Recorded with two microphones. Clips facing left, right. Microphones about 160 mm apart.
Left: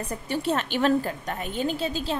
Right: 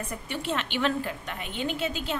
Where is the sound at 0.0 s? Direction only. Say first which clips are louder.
Left 5 dB; 35° left (ahead or behind).